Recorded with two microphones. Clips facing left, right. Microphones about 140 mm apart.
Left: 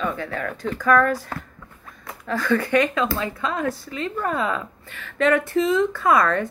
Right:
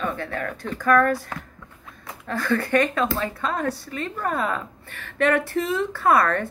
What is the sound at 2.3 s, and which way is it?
Speech, 50° right (ahead or behind).